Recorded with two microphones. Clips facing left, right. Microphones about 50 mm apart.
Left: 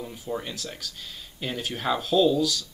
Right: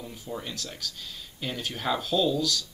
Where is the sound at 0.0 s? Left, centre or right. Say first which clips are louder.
Left 4 dB; centre.